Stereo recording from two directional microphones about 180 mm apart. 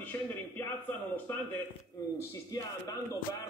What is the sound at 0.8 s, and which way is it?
Speech, 10° left (ahead or behind).